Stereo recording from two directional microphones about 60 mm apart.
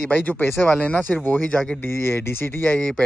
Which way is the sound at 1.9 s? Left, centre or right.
Left.